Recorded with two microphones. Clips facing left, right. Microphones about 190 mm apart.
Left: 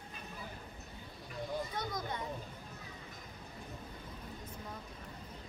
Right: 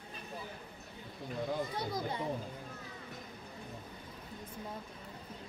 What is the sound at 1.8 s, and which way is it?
Children playing, 30° right (ahead or behind).